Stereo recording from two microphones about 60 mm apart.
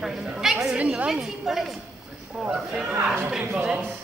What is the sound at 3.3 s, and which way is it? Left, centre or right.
Speech, centre.